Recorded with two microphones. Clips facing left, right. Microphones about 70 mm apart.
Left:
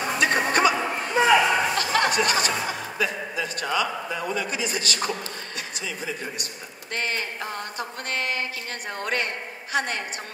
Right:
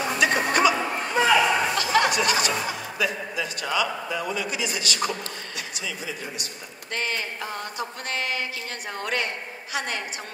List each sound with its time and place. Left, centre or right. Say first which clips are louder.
0.2 s music: even; left
1.1 s a sound: left 1 dB; centre
1.8 s music: right 1 dB; left
3.0 s a man's voice: even; left